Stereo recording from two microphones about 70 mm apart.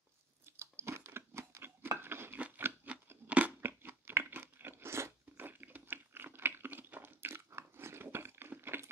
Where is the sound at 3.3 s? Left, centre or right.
Right.